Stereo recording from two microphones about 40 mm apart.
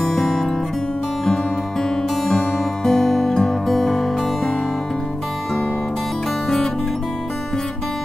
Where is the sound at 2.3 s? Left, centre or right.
Centre.